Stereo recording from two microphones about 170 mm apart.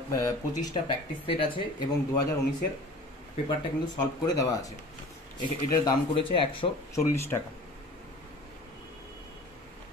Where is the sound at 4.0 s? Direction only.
20° left (ahead or behind).